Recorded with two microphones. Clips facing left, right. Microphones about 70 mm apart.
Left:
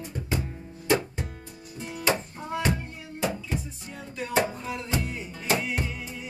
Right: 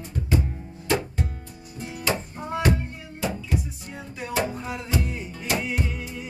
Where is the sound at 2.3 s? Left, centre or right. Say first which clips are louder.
Right 2 dB; centre.